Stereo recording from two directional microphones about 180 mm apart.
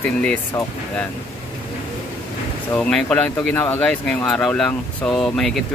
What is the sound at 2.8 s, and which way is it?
Speech, 5° left (ahead or behind).